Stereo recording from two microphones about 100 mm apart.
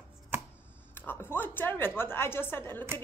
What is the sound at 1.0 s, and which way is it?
A woman's voice, 20° left (ahead or behind).